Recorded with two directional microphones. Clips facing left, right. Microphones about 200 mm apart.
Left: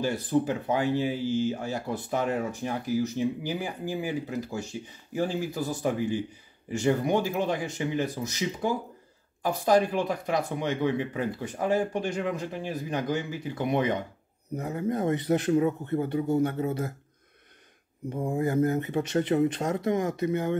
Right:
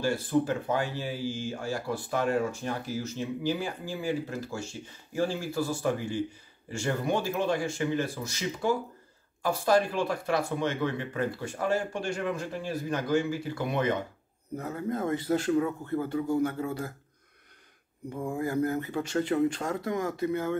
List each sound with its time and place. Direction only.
0.0 s a man's voice: 20° left (ahead or behind)
18.4 s a man's voice: 20° left (ahead or behind)